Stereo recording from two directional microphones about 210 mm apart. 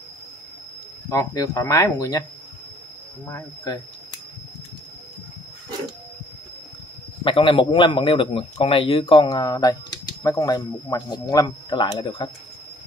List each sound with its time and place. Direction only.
1.0 s speech: 15° left (ahead or behind)
3.3 s speech: 15° left (ahead or behind)
7.2 s a man's voice: 25° left (ahead or behind)